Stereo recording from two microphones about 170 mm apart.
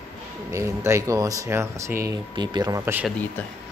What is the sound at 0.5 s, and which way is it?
Speech, 15° right (ahead or behind).